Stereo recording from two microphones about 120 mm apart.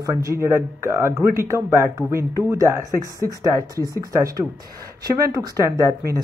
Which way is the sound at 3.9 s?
30° right (ahead or behind).